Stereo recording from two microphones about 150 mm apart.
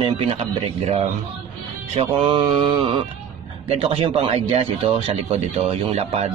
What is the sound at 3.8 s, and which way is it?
Speech, 35° right (ahead or behind).